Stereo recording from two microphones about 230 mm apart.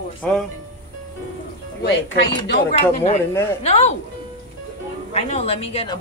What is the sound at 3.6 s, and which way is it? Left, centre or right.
Speech, left.